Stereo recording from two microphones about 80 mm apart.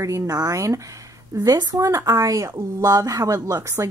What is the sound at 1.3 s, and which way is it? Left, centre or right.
A woman's voice, right.